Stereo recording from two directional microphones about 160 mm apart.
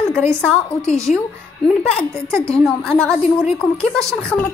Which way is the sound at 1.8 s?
5° left (ahead or behind).